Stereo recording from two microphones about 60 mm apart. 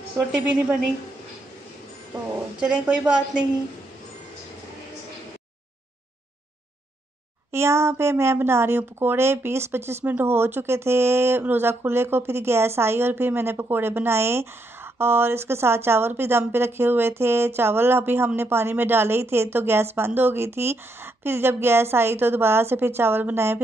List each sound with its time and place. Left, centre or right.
0.3 s a woman's voice: right
2.6 s a woman's voice: centre
7.5 s a woman's voice: right